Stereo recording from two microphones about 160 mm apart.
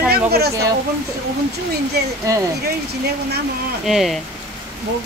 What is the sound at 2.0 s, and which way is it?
Speech, 80° right.